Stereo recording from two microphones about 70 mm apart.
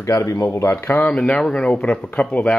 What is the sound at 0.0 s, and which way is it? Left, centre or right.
Speech, left.